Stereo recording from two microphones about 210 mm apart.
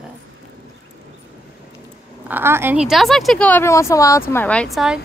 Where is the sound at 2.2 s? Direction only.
10° right (ahead or behind).